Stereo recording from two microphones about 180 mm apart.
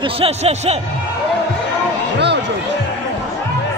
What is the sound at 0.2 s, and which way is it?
Speech, 35° right (ahead or behind).